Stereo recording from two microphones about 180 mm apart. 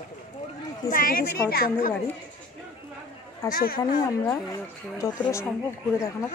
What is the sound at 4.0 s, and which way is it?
Speech, 20° left (ahead or behind).